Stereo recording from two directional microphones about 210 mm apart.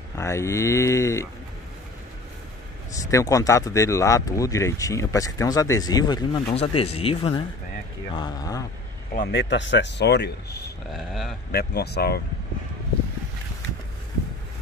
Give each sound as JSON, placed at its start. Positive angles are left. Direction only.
{"t": 0.2, "sound": "speech", "side_deg": 15}
{"t": 3.1, "sound": "speech", "side_deg": 15}
{"t": 9.1, "sound": "speech", "side_deg": 50}
{"t": 10.9, "sound": "a sound", "side_deg": 0}
{"t": 11.5, "sound": "speech", "side_deg": 50}